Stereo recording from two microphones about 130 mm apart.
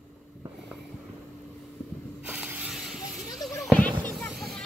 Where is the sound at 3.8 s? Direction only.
10° left (ahead or behind).